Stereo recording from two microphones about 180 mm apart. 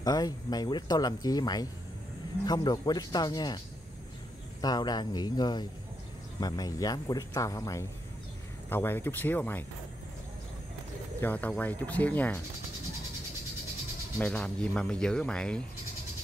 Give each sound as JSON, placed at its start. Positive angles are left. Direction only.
{"t": 0.0, "sound": "speech", "side_deg": 20}
{"t": 11.1, "sound": "speech", "side_deg": 10}
{"t": 14.1, "sound": "speech", "side_deg": 5}